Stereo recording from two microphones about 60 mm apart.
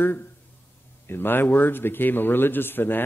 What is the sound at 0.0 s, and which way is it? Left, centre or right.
A man's voice, left.